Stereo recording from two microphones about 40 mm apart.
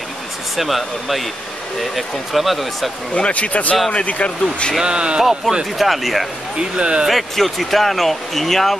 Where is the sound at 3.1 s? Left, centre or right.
Left.